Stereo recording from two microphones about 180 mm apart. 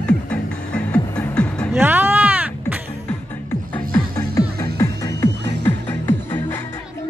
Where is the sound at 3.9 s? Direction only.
15° left (ahead or behind).